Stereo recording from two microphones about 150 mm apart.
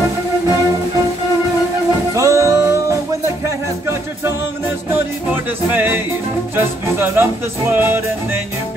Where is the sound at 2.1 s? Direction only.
20° right (ahead or behind).